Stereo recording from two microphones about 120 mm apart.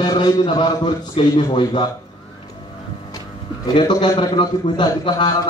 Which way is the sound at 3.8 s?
45° left (ahead or behind).